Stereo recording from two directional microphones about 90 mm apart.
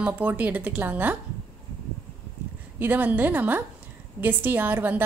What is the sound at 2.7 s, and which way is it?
A woman's voice, 20° right (ahead or behind).